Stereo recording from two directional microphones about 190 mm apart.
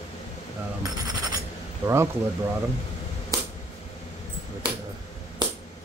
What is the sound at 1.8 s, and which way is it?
Speech, 15° right (ahead or behind).